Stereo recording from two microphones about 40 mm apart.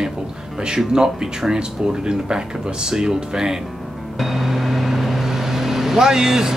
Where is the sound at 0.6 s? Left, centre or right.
Centre.